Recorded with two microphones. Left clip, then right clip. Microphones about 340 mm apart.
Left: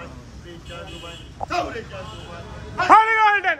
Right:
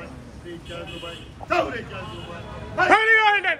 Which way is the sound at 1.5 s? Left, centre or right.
Centre.